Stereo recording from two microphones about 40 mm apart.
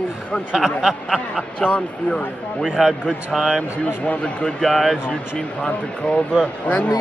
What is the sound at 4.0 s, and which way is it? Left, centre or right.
Speech, left.